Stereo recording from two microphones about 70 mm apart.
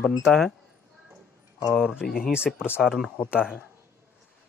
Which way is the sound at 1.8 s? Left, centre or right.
Centre.